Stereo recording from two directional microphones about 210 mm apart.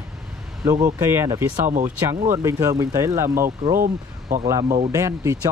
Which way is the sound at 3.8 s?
40° right (ahead or behind).